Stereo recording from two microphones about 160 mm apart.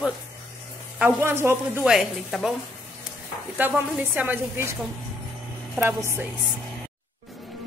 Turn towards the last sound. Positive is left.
turn(degrees=-15)  # may be behind; listen again after turning